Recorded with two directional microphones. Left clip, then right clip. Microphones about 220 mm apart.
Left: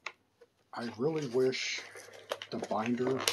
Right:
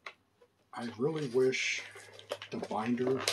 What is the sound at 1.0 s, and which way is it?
Speech, centre (ahead or behind).